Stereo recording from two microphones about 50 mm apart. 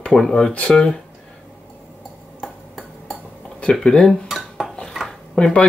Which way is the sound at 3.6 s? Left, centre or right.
Centre.